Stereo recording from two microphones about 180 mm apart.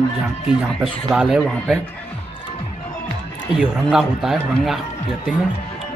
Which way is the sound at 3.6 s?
Centre (ahead or behind).